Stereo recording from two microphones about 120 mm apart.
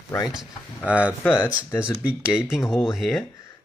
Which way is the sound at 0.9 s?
10° right (ahead or behind).